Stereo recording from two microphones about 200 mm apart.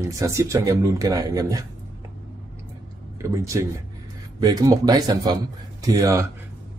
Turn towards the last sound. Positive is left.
turn(degrees=-15)  # may be behind; listen again after turning